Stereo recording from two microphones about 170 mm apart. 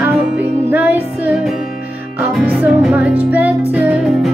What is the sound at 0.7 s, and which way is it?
Music, 10° right (ahead or behind).